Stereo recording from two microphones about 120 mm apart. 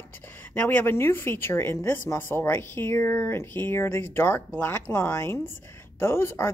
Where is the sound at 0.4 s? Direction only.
15° left (ahead or behind).